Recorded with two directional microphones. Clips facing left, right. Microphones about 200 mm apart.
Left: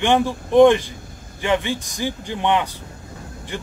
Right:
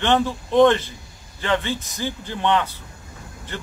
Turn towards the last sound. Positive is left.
turn(degrees=15)  # may be behind; listen again after turning